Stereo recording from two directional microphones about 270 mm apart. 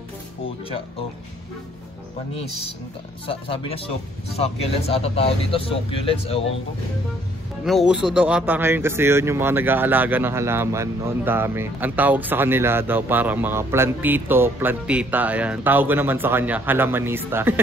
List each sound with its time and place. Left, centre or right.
3.3 s speech: centre
7.6 s a man's voice: centre